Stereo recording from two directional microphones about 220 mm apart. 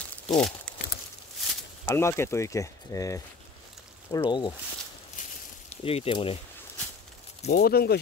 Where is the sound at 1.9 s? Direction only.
10° left (ahead or behind).